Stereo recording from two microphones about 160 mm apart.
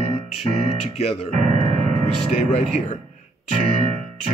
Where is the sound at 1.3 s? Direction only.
50° right (ahead or behind).